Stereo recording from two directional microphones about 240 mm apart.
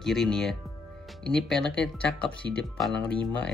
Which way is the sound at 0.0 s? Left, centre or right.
Centre.